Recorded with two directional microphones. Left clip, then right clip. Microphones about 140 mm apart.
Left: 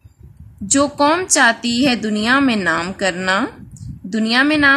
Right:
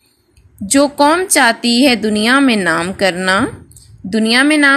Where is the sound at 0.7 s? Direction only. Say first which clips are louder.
Right 4 dB; 20° right (ahead or behind).